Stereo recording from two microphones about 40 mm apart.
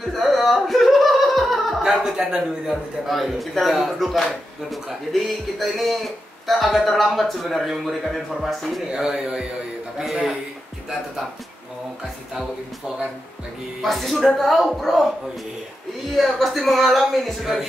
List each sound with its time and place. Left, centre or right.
0.1 s a sound: centre
1.8 s a sound: centre
2.1 s a man's voice: centre
2.7 s a man's voice: centre
8.9 s a man's voice: centre
12.4 s a man's voice: centre
13.8 s a man's voice: centre
16.2 s a man's voice: centre